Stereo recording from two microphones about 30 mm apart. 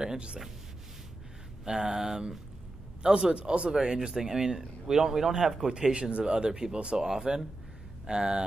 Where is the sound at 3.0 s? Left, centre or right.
Right.